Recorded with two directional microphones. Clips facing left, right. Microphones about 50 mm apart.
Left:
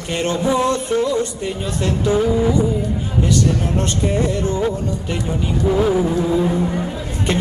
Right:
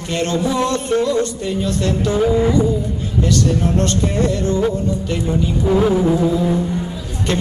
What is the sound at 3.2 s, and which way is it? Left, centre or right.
A man's voice, centre.